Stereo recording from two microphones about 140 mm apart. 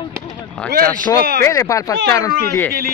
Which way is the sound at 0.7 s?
90° right.